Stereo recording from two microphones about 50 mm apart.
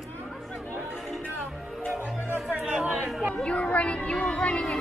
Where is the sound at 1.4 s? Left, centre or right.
Centre.